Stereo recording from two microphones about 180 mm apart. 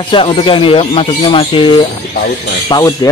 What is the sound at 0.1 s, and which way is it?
Speech, 30° left (ahead or behind).